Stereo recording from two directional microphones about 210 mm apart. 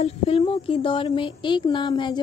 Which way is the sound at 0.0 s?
30° left (ahead or behind).